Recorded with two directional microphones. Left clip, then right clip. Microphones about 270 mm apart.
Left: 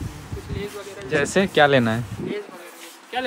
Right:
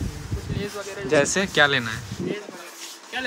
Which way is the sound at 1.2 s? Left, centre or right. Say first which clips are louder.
Left 4 dB; centre.